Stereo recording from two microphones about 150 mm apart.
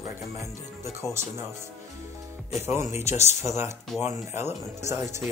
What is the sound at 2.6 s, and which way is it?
Speech, 15° right (ahead or behind).